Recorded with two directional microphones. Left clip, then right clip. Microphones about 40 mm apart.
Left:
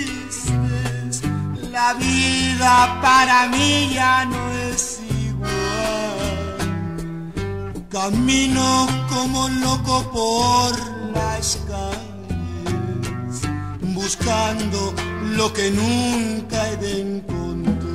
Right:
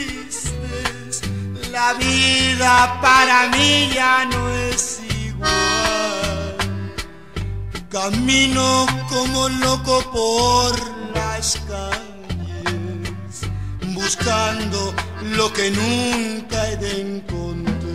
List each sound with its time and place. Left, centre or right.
1.7 s music: left
7.9 s music: left
13.8 s music: left